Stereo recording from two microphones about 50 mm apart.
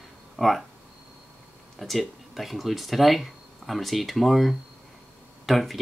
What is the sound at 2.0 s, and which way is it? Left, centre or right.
Speech, centre.